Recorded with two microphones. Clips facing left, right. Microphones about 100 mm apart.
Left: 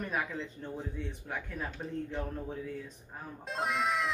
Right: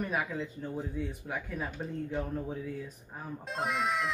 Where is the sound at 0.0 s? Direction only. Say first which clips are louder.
Right 2 dB; 5° right (ahead or behind).